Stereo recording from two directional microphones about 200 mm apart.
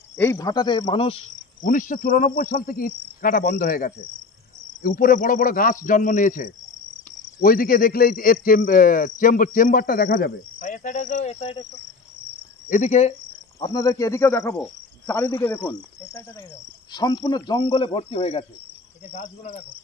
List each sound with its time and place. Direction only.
0.2 s a man's voice: 15° left (ahead or behind)
1.6 s speech: 40° left (ahead or behind)
12.6 s speech: 40° left (ahead or behind)
13.6 s speech: 20° left (ahead or behind)
14.6 s cricket: 10° left (ahead or behind)
15.4 s a man's voice: 10° left (ahead or behind); by 19.6 s 40° left (ahead or behind)